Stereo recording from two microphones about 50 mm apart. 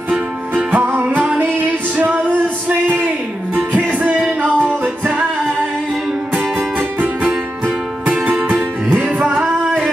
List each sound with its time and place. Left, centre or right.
0.7 s music: right
1.1 s music: right
2.7 s music: right
6.8 s music: right
9.3 s singing: centre